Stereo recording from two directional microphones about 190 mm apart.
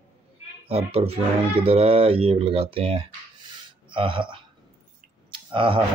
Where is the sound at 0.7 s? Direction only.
30° right (ahead or behind).